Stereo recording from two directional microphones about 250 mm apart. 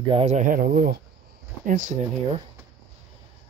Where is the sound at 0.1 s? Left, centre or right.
Right.